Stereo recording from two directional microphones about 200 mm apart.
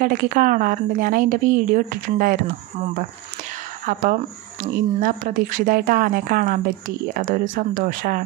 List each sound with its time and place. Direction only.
0.0 s speech: 45° right (ahead or behind)
3.8 s speech: 40° right (ahead or behind)